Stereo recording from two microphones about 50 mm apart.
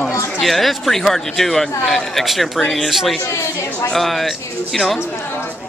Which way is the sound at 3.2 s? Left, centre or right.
Left.